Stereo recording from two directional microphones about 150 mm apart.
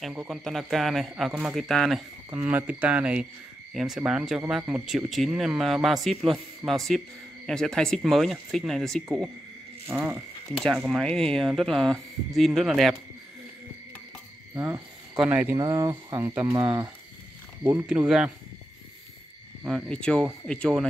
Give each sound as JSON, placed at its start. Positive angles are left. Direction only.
{"t": 0.0, "sound": "a man's voice", "side_deg": 0}
{"t": 9.9, "sound": "a man's voice", "side_deg": -10}
{"t": 14.5, "sound": "cricket", "side_deg": -20}
{"t": 15.1, "sound": "speech", "side_deg": -10}
{"t": 15.5, "sound": "speech", "side_deg": -30}
{"t": 17.6, "sound": "a man's voice", "side_deg": -10}
{"t": 19.6, "sound": "a man's voice", "side_deg": 5}